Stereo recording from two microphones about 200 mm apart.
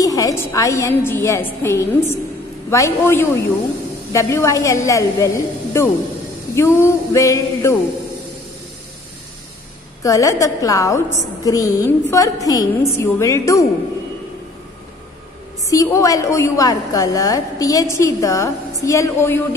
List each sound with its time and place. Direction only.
0.0 s a woman's voice: 15° left (ahead or behind)
10.0 s a woman's voice: 15° left (ahead or behind)
15.7 s a woman's voice: 15° left (ahead or behind)